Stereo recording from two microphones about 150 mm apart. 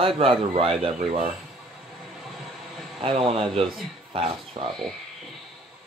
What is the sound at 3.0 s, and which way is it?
Speech, 40° right (ahead or behind).